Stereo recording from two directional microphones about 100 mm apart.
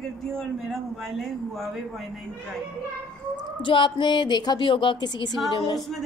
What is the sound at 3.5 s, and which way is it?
Speech, 55° left (ahead or behind).